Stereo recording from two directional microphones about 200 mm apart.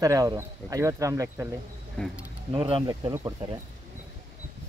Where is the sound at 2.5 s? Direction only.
25° right (ahead or behind).